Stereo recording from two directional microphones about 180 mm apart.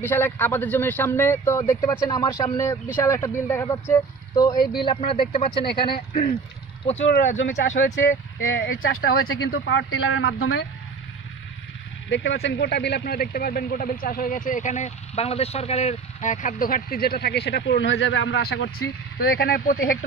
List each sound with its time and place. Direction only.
0.0 s speech: 10° left (ahead or behind); by 5.7 s 30° left (ahead or behind)
5.9 s a man's voice: 55° left (ahead or behind)
7.3 s a man's voice: 90° left
12.1 s a man's voice: 80° left
19.1 s speech: 55° left (ahead or behind)